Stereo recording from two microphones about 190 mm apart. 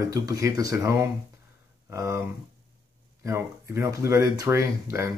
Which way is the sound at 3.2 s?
15° right (ahead or behind).